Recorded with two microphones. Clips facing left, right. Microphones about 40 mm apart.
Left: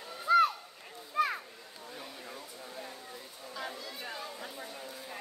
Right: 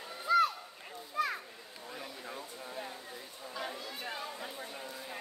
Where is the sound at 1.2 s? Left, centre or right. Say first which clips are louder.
Left 3 dB; left.